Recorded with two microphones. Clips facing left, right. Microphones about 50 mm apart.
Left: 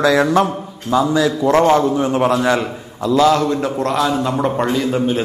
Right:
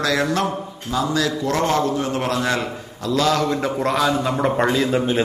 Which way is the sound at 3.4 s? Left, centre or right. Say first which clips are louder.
Left 2 dB; centre.